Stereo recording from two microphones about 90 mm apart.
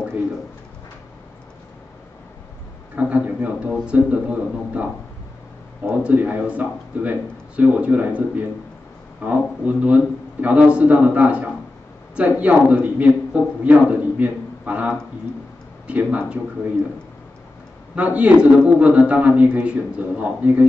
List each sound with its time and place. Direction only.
3.0 s a man's voice: 15° right (ahead or behind)
5.9 s a man's voice: 15° right (ahead or behind)
17.9 s a man's voice: 15° right (ahead or behind)